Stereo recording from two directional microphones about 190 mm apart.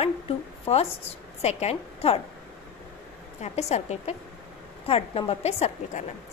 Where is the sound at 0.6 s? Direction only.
30° left (ahead or behind).